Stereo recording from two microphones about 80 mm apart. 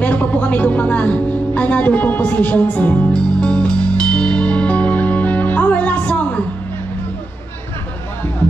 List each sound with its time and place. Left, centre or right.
0.0 s a woman's voice: centre
3.1 s music: centre